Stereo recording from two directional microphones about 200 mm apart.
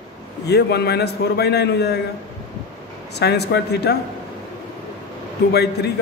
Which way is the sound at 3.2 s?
55° left (ahead or behind).